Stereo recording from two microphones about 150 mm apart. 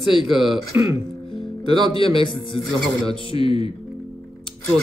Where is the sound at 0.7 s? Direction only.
15° right (ahead or behind).